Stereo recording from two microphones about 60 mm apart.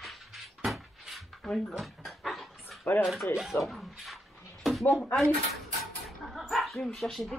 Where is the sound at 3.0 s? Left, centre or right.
Centre.